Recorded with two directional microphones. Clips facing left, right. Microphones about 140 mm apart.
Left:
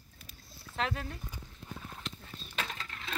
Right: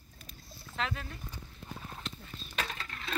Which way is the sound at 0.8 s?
50° left (ahead or behind).